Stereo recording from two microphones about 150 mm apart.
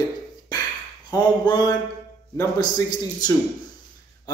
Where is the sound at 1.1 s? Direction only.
30° left (ahead or behind).